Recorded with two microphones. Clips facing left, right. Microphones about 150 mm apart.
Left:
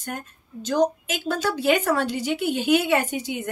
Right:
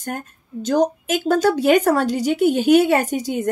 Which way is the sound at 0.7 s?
50° right (ahead or behind).